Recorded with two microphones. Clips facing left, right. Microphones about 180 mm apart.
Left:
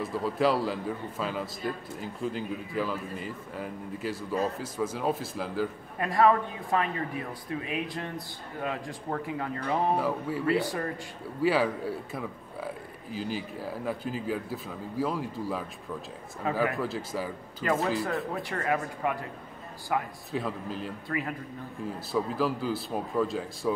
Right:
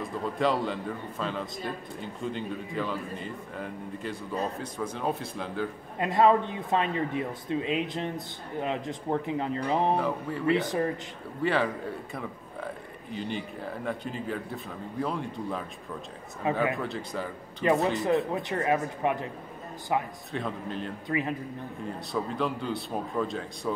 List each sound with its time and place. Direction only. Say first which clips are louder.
0.0 s a man's voice: left 1 dB; 5° left (ahead or behind)
5.9 s speech: right 1 dB; 20° right (ahead or behind)
9.9 s speech: even; 5° left (ahead or behind)
10.4 s speech: right 3 dB; 20° right (ahead or behind)
11.4 s a man's voice: left 2 dB; 5° left (ahead or behind)
16.7 s a man's voice: left 1 dB; 5° left (ahead or behind)
18.0 s speech: right 5 dB; 20° right (ahead or behind)
20.3 s a man's voice: even; 5° left (ahead or behind)
21.1 s speech: right 4 dB; 20° right (ahead or behind)
21.8 s a man's voice: left 2 dB; 5° left (ahead or behind)